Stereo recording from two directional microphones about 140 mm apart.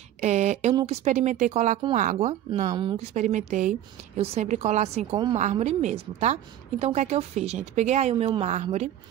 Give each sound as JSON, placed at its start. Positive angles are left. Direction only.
{"t": 0.2, "sound": "a woman's voice", "side_deg": -55}
{"t": 2.7, "sound": "speech", "side_deg": -35}
{"t": 3.0, "sound": "a woman's voice", "side_deg": -60}